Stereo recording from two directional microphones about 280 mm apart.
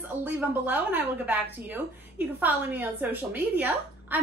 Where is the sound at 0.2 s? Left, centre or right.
Centre.